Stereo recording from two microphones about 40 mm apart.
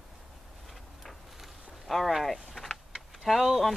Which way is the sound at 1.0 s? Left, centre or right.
Centre.